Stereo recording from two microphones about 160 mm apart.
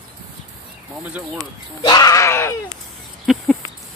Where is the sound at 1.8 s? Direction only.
25° left (ahead or behind).